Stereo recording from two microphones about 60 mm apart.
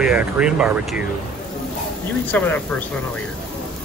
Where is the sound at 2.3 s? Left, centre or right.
Left.